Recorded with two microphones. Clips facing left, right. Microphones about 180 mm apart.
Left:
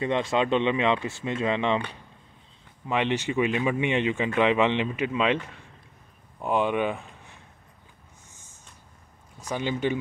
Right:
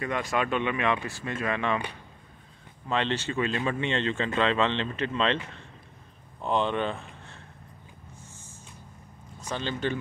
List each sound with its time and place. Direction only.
0.0 s speech: 25° left (ahead or behind)
2.9 s speech: 15° left (ahead or behind)
9.5 s speech: 15° left (ahead or behind)